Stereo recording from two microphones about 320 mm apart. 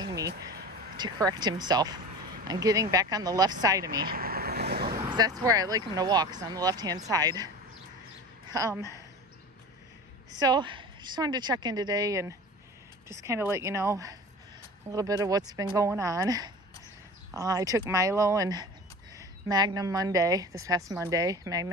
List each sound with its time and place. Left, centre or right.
0.0 s a sound: centre
0.3 s a sound: right
0.9 s speech: centre
4.0 s vehicle: right
4.9 s speech: centre
8.5 s speech: centre
10.4 s speech: centre